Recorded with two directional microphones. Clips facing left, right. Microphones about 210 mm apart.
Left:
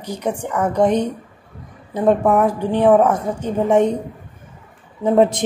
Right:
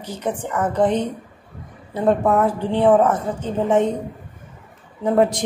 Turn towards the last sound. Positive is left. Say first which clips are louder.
# left 3 dB
turn(degrees=20)  # may be behind; listen again after turning